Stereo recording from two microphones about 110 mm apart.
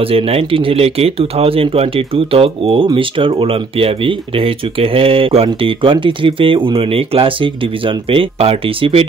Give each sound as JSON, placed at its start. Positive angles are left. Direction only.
{"t": 0.0, "sound": "speech", "side_deg": -60}